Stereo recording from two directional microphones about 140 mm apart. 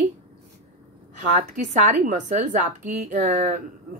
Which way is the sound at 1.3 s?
65° right (ahead or behind).